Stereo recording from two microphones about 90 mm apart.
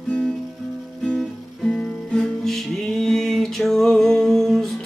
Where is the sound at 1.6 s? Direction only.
5° left (ahead or behind).